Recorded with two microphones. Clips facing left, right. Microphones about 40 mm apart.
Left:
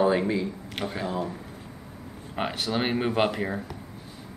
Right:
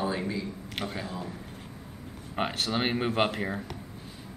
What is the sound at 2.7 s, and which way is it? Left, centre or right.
Speech, centre.